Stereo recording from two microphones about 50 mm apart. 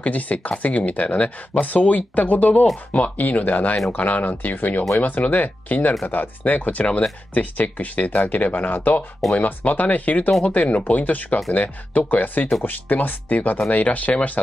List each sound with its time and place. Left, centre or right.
0.0 s speech: left